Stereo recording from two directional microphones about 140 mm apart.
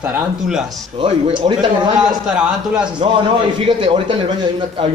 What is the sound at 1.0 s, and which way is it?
Speech, 35° right (ahead or behind).